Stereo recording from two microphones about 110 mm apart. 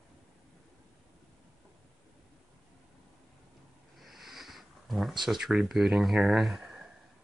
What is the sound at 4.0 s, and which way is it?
Sniff, centre (ahead or behind).